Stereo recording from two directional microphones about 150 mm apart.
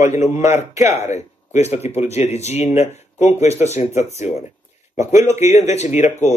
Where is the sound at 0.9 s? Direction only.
50° left (ahead or behind).